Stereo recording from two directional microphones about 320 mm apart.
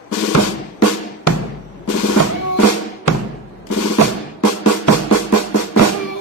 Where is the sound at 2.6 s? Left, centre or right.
Left.